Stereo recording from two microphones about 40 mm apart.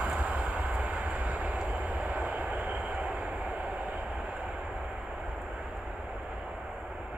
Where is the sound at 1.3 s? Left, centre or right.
Right.